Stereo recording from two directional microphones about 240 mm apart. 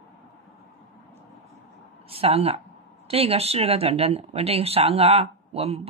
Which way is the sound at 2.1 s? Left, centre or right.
Right.